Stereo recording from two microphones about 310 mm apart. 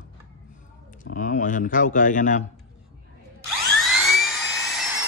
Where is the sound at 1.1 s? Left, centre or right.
Left.